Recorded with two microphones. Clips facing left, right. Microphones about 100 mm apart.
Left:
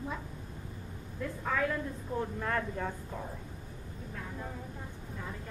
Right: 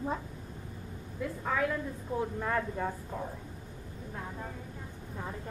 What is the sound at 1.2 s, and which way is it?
A woman's voice, 5° right (ahead or behind).